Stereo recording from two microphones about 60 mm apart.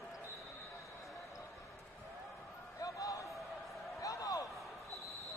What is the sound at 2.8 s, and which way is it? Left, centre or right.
Basketball bounce, left.